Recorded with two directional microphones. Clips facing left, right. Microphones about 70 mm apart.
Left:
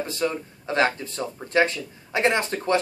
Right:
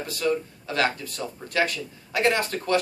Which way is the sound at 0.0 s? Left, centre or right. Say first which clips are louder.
Right 1 dB; left.